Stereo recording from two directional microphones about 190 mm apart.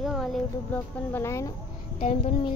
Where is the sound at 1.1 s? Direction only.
15° left (ahead or behind).